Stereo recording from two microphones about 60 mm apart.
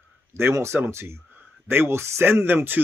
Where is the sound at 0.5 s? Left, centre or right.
Right.